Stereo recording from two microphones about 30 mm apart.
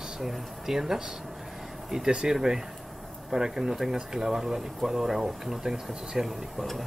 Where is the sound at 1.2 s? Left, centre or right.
Centre.